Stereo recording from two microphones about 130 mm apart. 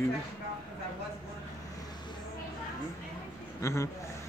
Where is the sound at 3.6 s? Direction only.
20° left (ahead or behind).